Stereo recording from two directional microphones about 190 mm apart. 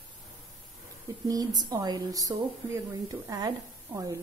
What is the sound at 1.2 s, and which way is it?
A woman's voice, 20° right (ahead or behind).